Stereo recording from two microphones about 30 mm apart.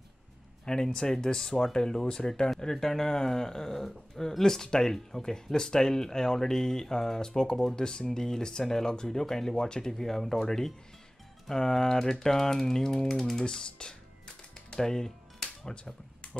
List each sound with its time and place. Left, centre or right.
0.7 s speech: left
2.6 s speech: centre
9.9 s speech: centre
13.5 s music: left
15.7 s speech: left